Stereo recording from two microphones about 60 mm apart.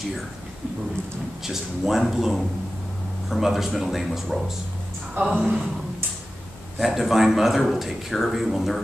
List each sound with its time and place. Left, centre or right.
1.4 s a man's voice: centre
5.4 s speech: centre
6.8 s a man's voice: centre